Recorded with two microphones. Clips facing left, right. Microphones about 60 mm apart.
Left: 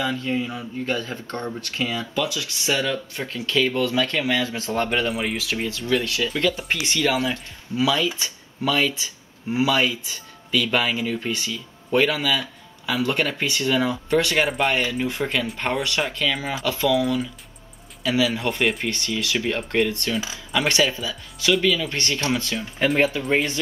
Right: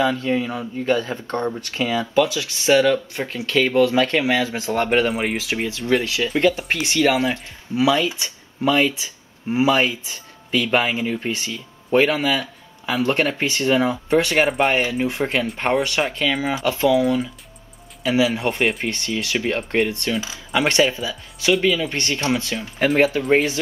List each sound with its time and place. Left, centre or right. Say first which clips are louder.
0.2 s speech: right 4 dB; right
4.7 s speech: right 4 dB; right
22.8 s speech: right 3 dB; centre